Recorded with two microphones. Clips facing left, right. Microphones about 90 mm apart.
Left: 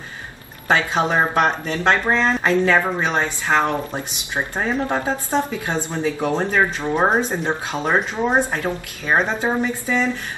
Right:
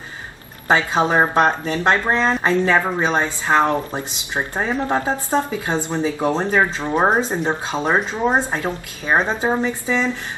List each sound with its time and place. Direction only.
0.7 s speech: 20° right (ahead or behind)